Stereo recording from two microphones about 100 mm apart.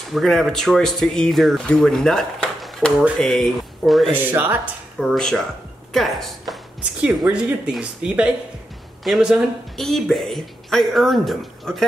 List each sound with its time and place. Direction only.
0.1 s speech: centre (ahead or behind)
4.1 s speech: 20° right (ahead or behind)
4.9 s speech: centre (ahead or behind)
6.8 s speech: 15° right (ahead or behind); by 11.8 s centre (ahead or behind)